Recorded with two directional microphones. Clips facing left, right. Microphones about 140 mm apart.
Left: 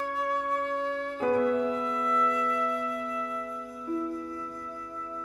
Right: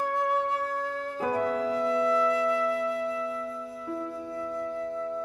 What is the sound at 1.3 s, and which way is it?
Music, 35° right (ahead or behind).